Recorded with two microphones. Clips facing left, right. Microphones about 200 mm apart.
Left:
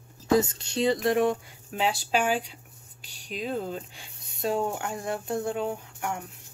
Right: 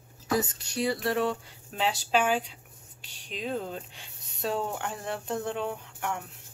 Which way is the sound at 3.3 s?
5° left (ahead or behind).